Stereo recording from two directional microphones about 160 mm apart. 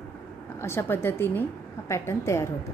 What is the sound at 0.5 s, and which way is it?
A woman's voice, 15° left (ahead or behind).